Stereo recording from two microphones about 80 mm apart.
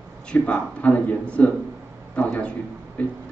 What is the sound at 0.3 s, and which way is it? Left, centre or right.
A man's voice, centre.